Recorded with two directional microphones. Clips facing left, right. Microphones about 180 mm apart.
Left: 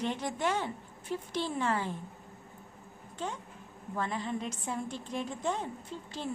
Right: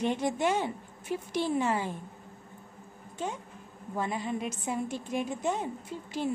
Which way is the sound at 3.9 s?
10° right (ahead or behind).